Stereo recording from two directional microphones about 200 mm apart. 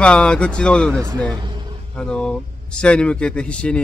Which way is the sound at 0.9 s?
15° right (ahead or behind).